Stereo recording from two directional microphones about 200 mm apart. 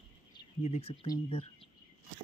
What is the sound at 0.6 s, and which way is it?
Speech, 30° left (ahead or behind).